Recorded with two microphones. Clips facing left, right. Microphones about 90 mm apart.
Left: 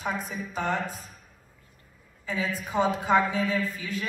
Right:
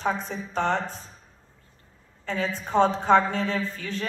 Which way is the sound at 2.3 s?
5° left (ahead or behind).